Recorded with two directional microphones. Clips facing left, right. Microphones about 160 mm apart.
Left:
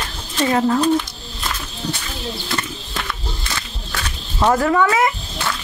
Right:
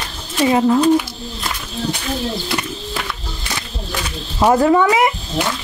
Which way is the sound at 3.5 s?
15° right (ahead or behind).